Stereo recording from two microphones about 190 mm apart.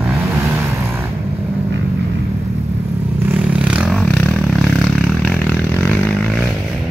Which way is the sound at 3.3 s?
5° right (ahead or behind).